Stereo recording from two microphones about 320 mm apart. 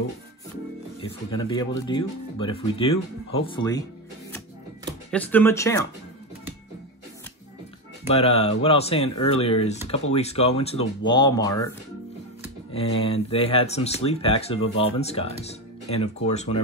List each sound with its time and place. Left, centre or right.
1.0 s speech: centre
5.1 s speech: centre
8.1 s speech: centre
12.7 s speech: centre